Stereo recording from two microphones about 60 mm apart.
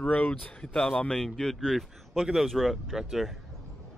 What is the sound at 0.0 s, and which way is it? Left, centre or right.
A man's voice, left.